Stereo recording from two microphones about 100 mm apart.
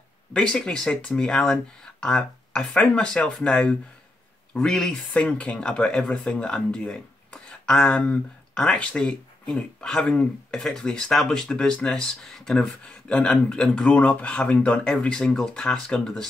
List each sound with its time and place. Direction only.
0.3 s speech: 10° left (ahead or behind)